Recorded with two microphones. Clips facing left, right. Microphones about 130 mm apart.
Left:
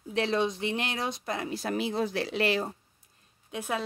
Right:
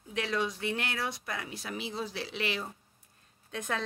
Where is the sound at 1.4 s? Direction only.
40° left (ahead or behind).